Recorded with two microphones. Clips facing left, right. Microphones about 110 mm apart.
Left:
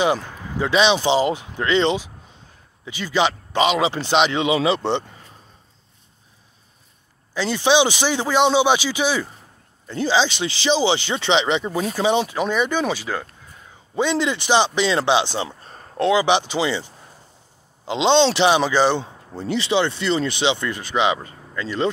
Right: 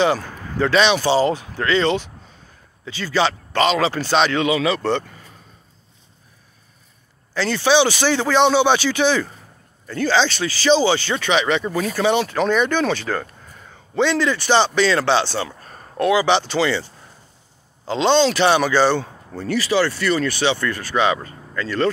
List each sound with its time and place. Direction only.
0.0 s speech: 15° left (ahead or behind)
7.3 s speech: 15° left (ahead or behind)